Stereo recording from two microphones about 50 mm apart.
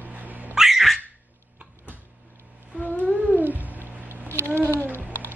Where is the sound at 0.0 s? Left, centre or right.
Right.